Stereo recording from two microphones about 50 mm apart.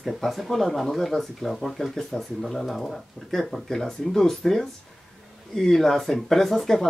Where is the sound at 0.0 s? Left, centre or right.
Centre.